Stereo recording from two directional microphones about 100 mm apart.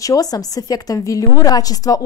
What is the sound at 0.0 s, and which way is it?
A woman's voice, 35° left (ahead or behind).